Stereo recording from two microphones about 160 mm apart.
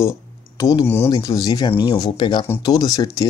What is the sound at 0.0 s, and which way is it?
Speech, 20° left (ahead or behind).